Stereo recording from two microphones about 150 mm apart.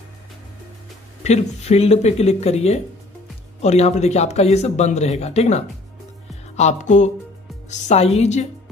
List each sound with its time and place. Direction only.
1.2 s speech: 45° left (ahead or behind)
6.5 s music: 50° left (ahead or behind)
7.7 s speech: 45° left (ahead or behind)